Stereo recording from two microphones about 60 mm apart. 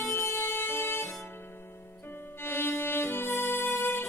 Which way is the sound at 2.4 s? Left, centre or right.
Left.